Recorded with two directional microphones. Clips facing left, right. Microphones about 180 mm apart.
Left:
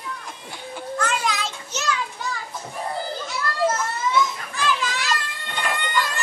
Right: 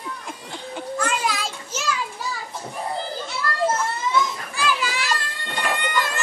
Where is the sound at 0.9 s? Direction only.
5° right (ahead or behind).